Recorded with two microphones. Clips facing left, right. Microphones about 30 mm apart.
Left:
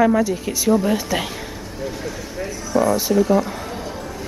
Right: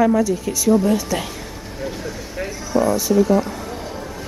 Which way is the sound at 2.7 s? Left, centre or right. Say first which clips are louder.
Right 1 dB; centre.